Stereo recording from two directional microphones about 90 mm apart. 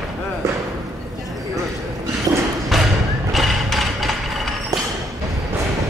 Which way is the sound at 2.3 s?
40° right (ahead or behind).